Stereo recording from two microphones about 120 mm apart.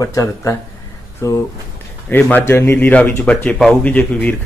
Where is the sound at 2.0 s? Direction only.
15° left (ahead or behind).